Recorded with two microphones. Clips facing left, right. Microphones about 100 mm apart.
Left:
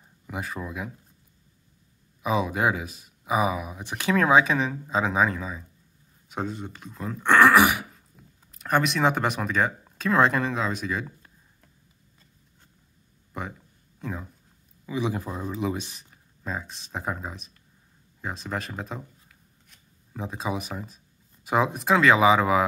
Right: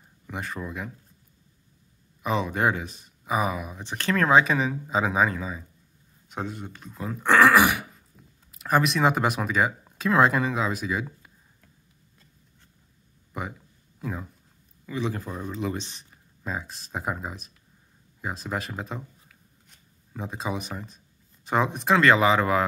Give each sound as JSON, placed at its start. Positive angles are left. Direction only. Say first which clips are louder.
{"t": 0.3, "sound": "speech", "louder": "even", "side_deg": 5}
{"t": 2.2, "sound": "speech", "louder": "even", "side_deg": 5}
{"t": 13.3, "sound": "a sound", "louder": "right 1 dB", "side_deg": -5}
{"t": 14.9, "sound": "speech", "louder": "left 2 dB", "side_deg": 10}